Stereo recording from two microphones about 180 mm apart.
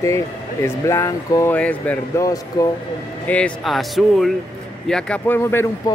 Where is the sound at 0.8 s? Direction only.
15° left (ahead or behind).